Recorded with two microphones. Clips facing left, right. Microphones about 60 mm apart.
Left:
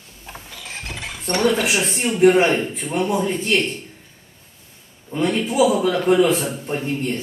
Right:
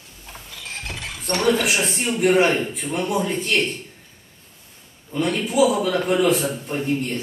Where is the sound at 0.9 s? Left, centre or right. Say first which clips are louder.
Left 1 dB; centre.